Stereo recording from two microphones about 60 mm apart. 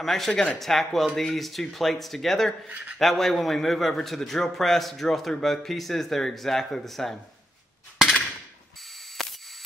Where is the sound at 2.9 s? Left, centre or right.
Centre.